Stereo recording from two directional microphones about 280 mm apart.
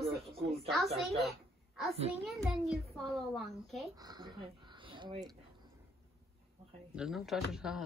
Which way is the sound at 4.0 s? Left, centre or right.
Centre.